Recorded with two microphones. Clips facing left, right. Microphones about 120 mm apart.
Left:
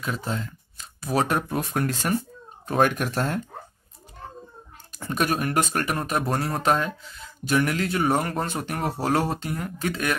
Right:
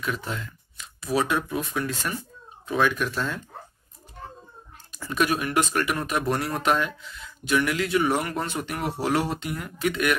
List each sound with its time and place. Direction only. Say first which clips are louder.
0.0 s speech: left 1 dB; 35° left (ahead or behind)
3.1 s speech: left 3 dB; 55° left (ahead or behind)
5.1 s speech: even; 40° left (ahead or behind)